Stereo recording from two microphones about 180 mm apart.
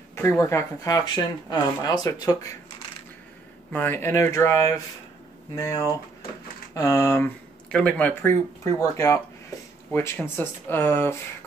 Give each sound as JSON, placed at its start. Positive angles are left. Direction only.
{"t": 0.1, "sound": "speech", "side_deg": 15}
{"t": 3.7, "sound": "speech", "side_deg": 10}